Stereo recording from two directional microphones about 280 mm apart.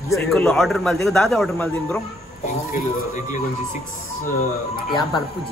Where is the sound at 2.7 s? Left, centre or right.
Left.